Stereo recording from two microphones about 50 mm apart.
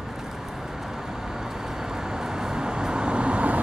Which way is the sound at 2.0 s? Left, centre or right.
Centre.